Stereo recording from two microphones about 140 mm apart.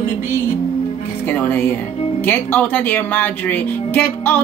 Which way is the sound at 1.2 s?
15° left (ahead or behind).